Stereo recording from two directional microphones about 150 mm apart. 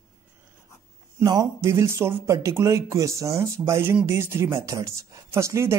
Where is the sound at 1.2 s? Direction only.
25° right (ahead or behind).